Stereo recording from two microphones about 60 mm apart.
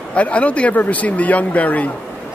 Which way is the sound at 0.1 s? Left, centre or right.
Left.